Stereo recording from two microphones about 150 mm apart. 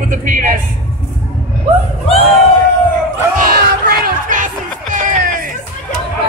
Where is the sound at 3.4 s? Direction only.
85° right; by 5.5 s 60° right (ahead or behind).